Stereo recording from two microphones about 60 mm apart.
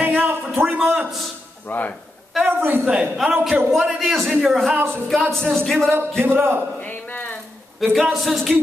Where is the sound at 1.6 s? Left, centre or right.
Left.